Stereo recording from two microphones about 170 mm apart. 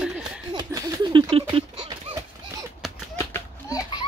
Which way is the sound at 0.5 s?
25° right (ahead or behind).